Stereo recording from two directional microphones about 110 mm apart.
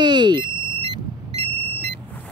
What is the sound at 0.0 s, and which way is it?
Vehicle, 45° right (ahead or behind).